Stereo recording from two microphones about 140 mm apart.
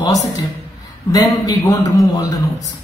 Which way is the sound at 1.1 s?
25° left (ahead or behind).